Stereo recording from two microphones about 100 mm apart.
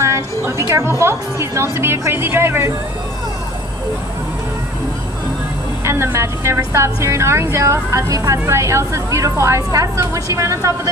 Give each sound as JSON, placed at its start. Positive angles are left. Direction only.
{"t": 0.0, "sound": "a woman's voice", "side_deg": -30}
{"t": 5.9, "sound": "a woman's voice", "side_deg": -25}